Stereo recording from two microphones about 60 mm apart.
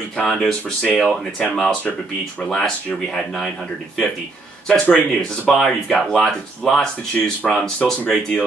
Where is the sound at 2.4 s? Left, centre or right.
Centre.